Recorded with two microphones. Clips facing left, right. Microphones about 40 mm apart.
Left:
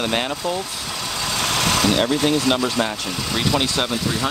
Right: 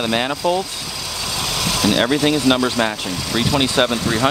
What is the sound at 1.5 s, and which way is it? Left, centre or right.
Vehicle, left.